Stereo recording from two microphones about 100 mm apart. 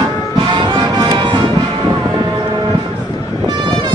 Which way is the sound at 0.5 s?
45° right (ahead or behind).